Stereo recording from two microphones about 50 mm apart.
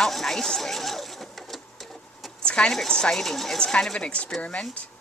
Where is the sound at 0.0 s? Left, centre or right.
Centre.